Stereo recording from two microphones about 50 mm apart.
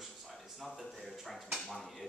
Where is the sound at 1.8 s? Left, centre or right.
Centre.